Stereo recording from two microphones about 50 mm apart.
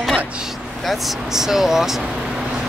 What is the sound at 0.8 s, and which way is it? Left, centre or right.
Speech, centre.